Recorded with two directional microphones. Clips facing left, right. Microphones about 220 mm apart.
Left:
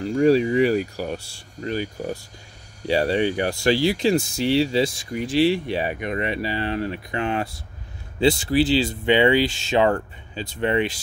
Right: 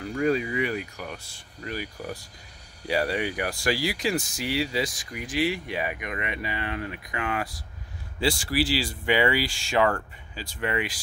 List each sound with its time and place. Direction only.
0.2 s speech: 35° left (ahead or behind)